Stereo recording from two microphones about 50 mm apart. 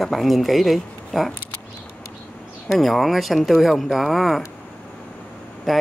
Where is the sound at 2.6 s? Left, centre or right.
Centre.